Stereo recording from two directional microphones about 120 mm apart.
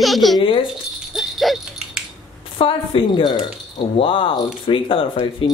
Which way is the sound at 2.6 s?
45° left (ahead or behind).